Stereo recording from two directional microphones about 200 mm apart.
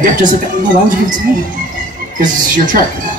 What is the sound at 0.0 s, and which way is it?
Speech, 45° right (ahead or behind).